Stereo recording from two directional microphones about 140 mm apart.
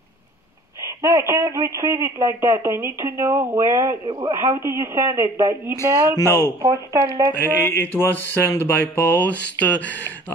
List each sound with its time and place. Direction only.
0.7 s a man's voice: 20° right (ahead or behind)
6.1 s speech: 20° left (ahead or behind)
6.6 s a man's voice: 20° right (ahead or behind)
7.6 s speech: 15° left (ahead or behind)